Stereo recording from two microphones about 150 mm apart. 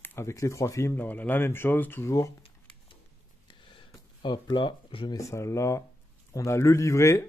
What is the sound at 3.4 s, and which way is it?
Speech, 35° left (ahead or behind).